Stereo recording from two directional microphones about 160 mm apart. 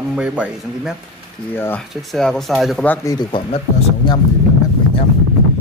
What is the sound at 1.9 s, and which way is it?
Speech, centre (ahead or behind).